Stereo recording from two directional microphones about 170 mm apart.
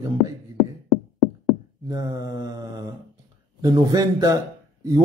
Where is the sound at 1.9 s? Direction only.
20° right (ahead or behind).